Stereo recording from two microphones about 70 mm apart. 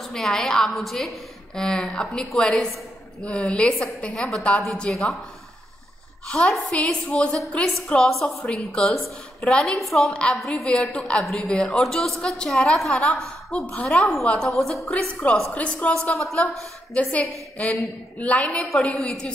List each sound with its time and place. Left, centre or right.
0.0 s a woman's voice: centre
6.2 s a woman's voice: centre
8.0 s a woman's voice: centre
15.5 s a woman's voice: centre
17.1 s a woman's voice: centre